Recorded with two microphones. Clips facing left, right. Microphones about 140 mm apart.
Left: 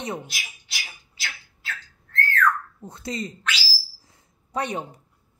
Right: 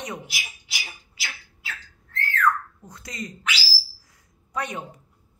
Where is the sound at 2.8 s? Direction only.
30° left (ahead or behind).